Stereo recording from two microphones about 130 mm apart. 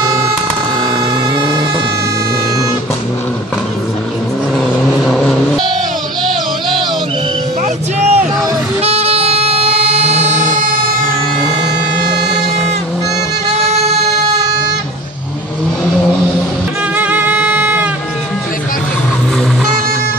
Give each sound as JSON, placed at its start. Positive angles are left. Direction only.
{"t": 4.6, "sound": "vehicle", "side_deg": 0}
{"t": 7.6, "sound": "music", "side_deg": -55}
{"t": 16.9, "sound": "music", "side_deg": -10}